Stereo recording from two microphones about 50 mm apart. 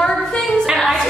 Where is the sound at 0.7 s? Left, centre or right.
Centre.